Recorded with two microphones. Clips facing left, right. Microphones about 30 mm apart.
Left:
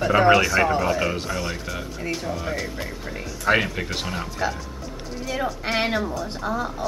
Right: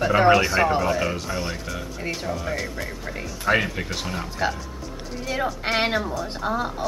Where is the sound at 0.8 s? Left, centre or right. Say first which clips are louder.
Even; centre.